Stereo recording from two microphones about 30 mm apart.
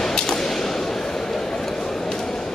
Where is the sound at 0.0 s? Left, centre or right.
Centre.